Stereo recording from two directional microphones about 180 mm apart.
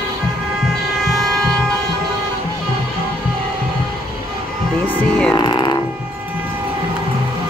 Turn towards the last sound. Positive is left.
turn(degrees=25)  # may be behind; listen again after turning